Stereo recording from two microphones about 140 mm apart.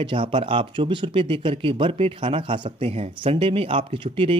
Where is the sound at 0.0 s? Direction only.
35° right (ahead or behind).